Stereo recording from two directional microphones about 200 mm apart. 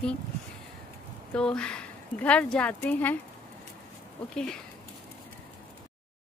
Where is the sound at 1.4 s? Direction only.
5° left (ahead or behind).